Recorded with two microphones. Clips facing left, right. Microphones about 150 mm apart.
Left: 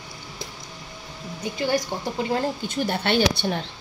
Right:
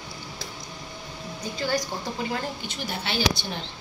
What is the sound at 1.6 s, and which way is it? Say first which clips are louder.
Speech: left 3 dB; 20° left (ahead or behind).